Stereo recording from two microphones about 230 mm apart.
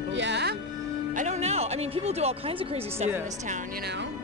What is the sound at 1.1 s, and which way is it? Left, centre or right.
Speech, right.